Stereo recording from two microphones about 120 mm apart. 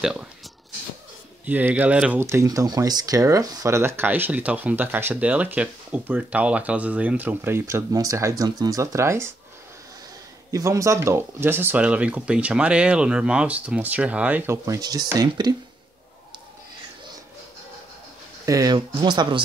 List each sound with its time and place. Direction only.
0.0 s speech: 5° right (ahead or behind)
1.4 s speech: 15° right (ahead or behind)
2.2 s speech: 25° right (ahead or behind)
10.5 s speech: 25° right (ahead or behind)
14.8 s speech: 35° right (ahead or behind)
18.4 s speech: 30° right (ahead or behind)